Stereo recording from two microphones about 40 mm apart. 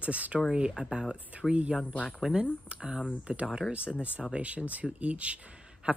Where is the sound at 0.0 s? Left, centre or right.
Right.